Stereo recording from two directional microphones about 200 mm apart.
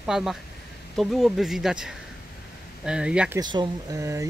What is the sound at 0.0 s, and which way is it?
Speech, centre (ahead or behind).